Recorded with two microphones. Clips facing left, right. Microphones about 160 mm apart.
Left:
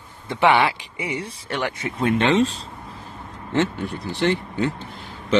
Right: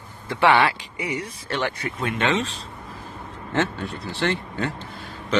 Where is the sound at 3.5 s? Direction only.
15° left (ahead or behind).